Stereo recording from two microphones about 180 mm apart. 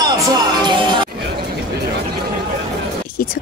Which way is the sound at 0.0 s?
25° right (ahead or behind).